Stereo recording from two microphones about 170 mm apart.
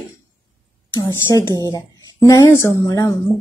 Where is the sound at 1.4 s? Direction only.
25° right (ahead or behind).